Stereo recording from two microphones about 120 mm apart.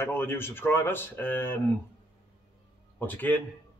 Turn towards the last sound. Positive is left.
turn(degrees=15)  # may be behind; listen again after turning